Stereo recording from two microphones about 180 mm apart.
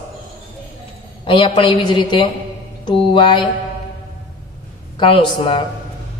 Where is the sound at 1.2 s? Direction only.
30° left (ahead or behind).